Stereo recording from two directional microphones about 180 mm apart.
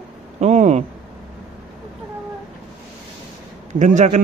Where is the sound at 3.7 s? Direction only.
45° right (ahead or behind).